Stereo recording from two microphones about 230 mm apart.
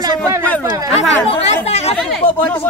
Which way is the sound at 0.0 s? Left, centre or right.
Centre.